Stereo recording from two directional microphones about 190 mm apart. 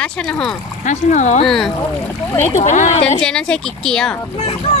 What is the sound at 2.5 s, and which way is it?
Speech, 40° left (ahead or behind).